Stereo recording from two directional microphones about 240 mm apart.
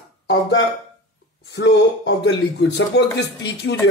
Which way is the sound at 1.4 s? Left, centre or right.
Left.